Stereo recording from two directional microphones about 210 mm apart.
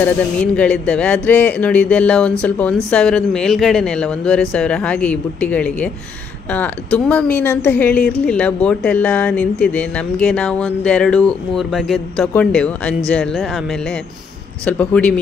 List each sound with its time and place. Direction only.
0.0 s speech: 5° left (ahead or behind)